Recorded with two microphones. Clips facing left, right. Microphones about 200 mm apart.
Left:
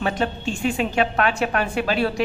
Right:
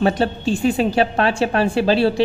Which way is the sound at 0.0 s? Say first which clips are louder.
Right 6 dB; 35° right (ahead or behind).